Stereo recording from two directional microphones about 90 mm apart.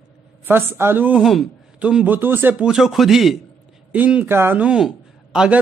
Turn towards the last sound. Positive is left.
turn(degrees=-10)  # may be behind; listen again after turning